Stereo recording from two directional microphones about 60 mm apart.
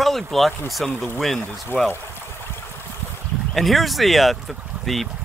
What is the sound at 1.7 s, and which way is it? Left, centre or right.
Speech, left.